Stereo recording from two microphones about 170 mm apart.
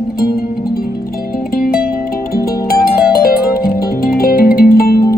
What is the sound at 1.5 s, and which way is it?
Music, 60° left (ahead or behind).